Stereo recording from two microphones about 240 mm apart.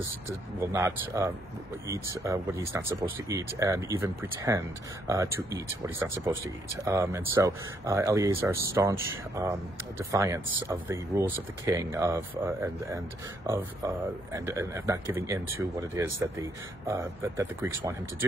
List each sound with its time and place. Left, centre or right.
0.6 s speech: centre